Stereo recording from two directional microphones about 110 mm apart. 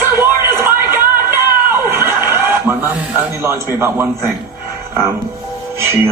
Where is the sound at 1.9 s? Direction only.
20° right (ahead or behind).